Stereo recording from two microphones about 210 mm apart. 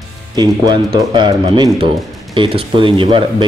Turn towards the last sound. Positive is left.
turn(degrees=-25)  # may be behind; listen again after turning